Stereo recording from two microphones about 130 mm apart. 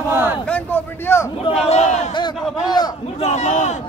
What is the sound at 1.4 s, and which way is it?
Speech, 55° left (ahead or behind).